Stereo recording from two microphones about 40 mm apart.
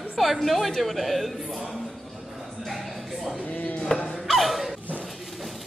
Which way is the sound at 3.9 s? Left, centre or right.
Left.